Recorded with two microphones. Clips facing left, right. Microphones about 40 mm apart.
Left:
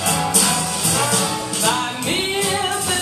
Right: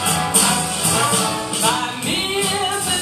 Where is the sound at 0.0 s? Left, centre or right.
Centre.